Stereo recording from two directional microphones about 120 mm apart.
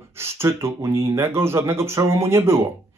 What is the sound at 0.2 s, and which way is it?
Speech, 20° right (ahead or behind).